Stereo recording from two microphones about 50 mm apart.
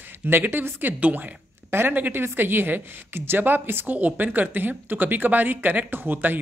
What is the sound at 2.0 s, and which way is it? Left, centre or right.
Speech, right.